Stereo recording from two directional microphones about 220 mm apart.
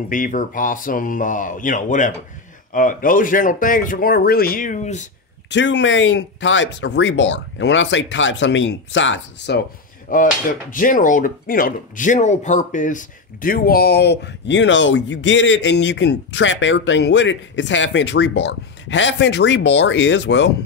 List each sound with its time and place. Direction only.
0.1 s speech: 35° left (ahead or behind)
5.5 s speech: 55° left (ahead or behind)
10.1 s speech: 40° left (ahead or behind); by 20.5 s 55° left (ahead or behind)